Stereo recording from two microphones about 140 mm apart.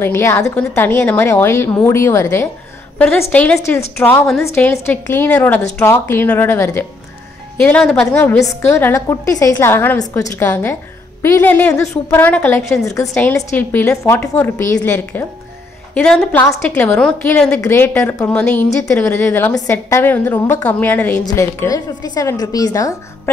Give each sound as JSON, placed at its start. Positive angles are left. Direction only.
{"t": 0.0, "sound": "a woman's voice", "side_deg": 15}